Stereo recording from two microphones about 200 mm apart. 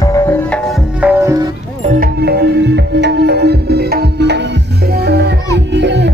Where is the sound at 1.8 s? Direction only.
40° right (ahead or behind).